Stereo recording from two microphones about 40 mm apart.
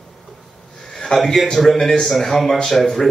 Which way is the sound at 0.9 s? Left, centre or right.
Centre.